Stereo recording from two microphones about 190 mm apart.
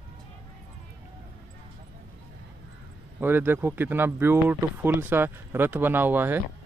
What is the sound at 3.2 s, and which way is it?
Speech, 10° right (ahead or behind).